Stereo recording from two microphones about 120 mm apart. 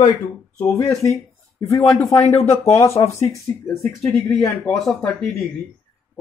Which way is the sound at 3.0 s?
40° left (ahead or behind).